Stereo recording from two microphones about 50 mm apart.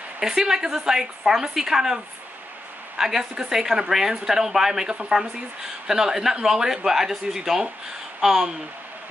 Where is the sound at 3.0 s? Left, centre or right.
Centre.